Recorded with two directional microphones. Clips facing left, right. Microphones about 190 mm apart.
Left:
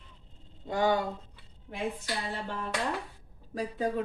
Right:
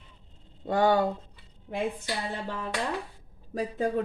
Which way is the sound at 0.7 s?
55° right (ahead or behind).